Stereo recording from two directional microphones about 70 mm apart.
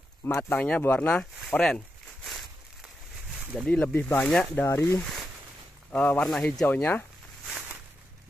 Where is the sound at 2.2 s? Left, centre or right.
Centre.